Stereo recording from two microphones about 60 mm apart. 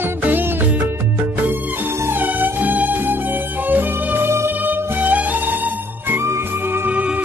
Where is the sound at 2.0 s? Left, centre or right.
Right.